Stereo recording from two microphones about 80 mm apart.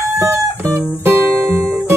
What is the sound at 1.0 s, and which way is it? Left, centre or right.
Guitar, right.